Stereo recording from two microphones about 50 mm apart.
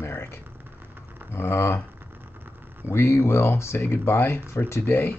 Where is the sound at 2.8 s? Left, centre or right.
Left.